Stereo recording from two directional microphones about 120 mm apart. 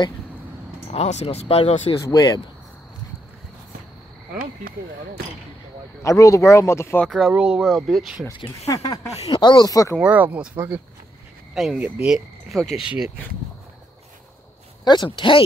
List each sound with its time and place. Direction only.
0.8 s speech: 65° left (ahead or behind)
2.0 s speech: 35° left (ahead or behind)
6.0 s speech: 25° left (ahead or behind)
7.1 s speech: centre (ahead or behind)
8.5 s speech: 30° left (ahead or behind)
9.2 s speech: 45° left (ahead or behind)
9.9 s speech: 10° right (ahead or behind)
11.5 s speech: centre (ahead or behind)
15.1 s speech: 45° left (ahead or behind)